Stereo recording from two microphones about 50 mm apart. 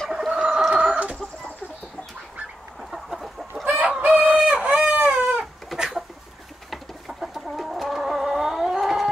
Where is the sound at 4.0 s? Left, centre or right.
Right.